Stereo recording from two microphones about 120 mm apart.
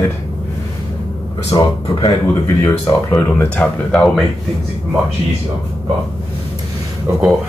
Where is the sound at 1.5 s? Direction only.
30° left (ahead or behind).